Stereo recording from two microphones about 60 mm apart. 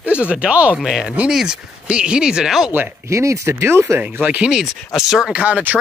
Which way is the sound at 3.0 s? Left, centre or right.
Right.